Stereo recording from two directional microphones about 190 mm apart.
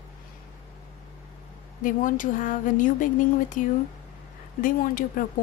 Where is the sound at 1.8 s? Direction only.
45° left (ahead or behind).